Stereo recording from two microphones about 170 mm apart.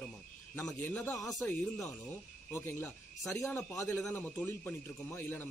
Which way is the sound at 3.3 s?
15° left (ahead or behind).